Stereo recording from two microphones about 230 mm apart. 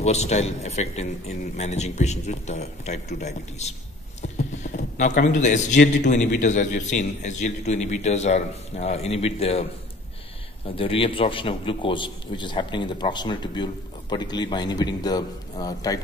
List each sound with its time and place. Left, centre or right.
0.0 s a man's voice: left
10.8 s a man's voice: left